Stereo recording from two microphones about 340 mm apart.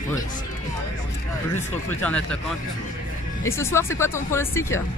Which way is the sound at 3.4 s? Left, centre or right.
Centre.